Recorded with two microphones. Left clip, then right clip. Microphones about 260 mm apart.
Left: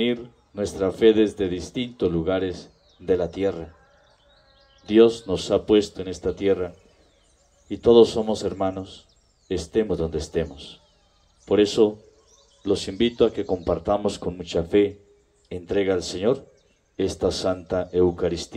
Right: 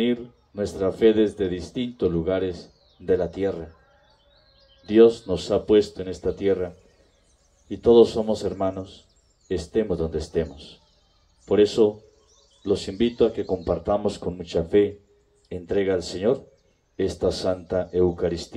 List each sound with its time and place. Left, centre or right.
0.0 s speech: left
4.8 s speech: left